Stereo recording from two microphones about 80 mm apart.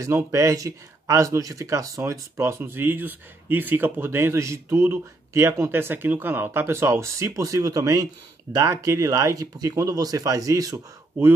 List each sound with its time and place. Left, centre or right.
0.0 s speech: right